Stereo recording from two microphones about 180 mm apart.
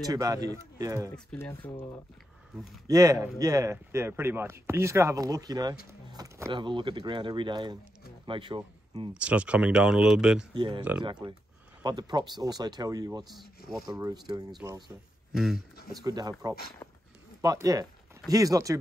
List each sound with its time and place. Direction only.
0.0 s speech: 20° right (ahead or behind)
1.1 s speech: 10° left (ahead or behind)
2.5 s speech: centre (ahead or behind)
2.9 s speech: 20° right (ahead or behind)
9.1 s speech: 5° right (ahead or behind)
10.5 s speech: 25° right (ahead or behind)
15.3 s speech: centre (ahead or behind)
15.9 s speech: 20° right (ahead or behind)